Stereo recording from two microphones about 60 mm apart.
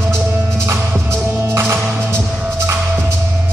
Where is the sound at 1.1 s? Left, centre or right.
Right.